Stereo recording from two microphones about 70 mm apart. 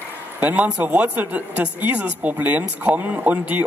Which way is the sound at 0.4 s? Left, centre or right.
Right.